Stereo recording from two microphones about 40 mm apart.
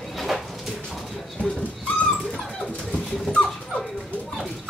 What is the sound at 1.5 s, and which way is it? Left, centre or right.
Dog, left.